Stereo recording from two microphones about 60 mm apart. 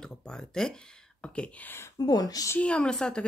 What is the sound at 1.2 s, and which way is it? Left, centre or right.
Speech, centre.